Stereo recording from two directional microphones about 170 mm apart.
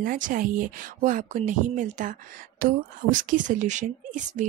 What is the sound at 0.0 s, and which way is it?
A woman's voice, 55° right (ahead or behind).